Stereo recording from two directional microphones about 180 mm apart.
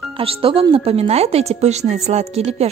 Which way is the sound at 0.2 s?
30° right (ahead or behind).